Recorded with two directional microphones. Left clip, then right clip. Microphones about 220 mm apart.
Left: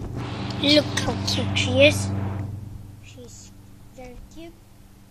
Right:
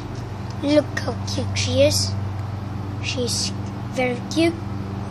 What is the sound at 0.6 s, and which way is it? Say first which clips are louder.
Speech: even; 5° right (ahead or behind).